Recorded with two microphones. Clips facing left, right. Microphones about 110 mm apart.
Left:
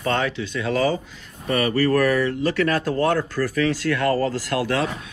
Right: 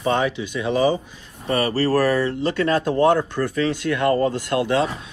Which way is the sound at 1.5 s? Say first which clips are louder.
Even; 30° right (ahead or behind).